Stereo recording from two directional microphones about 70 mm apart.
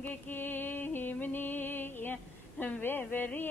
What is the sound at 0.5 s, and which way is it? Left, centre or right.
Music, left.